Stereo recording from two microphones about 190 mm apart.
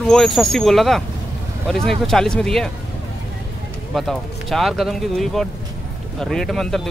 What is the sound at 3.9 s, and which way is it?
Speech, centre (ahead or behind).